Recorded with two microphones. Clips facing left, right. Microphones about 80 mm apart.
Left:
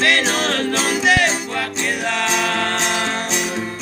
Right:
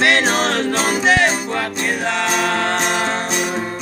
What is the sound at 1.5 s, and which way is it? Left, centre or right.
Music, right.